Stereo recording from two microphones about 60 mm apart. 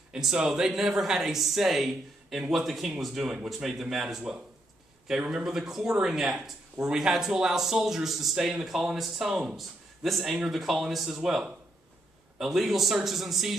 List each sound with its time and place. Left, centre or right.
0.1 s speech: centre
5.2 s speech: centre